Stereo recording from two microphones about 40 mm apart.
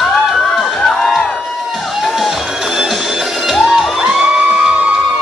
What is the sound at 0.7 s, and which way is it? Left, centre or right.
Music, centre.